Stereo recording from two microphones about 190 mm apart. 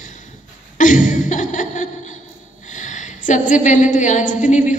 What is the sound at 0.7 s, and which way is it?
Chuckle, 40° left (ahead or behind).